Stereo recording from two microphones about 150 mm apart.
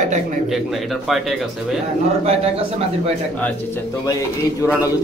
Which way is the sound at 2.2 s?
40° right (ahead or behind).